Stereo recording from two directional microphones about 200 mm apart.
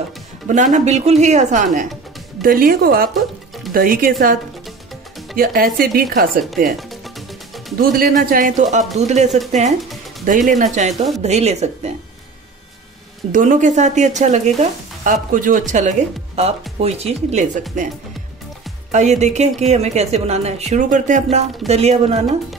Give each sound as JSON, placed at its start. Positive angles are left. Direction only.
{"t": 0.5, "sound": "speech", "side_deg": -40}
{"t": 5.4, "sound": "speech", "side_deg": -45}
{"t": 6.8, "sound": "music", "side_deg": 0}
{"t": 7.8, "sound": "speech", "side_deg": -45}
{"t": 13.3, "sound": "speech", "side_deg": -40}
{"t": 18.9, "sound": "speech", "side_deg": -35}